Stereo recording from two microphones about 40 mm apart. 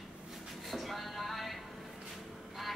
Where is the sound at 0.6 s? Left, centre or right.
Centre.